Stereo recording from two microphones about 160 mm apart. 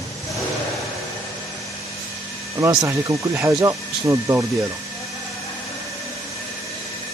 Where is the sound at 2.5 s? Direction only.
20° right (ahead or behind).